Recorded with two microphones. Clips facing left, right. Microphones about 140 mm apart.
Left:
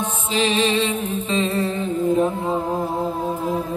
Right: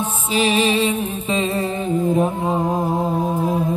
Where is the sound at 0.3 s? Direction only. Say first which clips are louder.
Right 2 dB; 10° right (ahead or behind).